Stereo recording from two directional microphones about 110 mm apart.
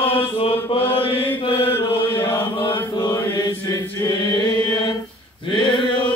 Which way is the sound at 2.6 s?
50° left (ahead or behind).